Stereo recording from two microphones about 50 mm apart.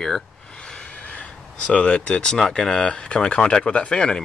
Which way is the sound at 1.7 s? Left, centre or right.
Left.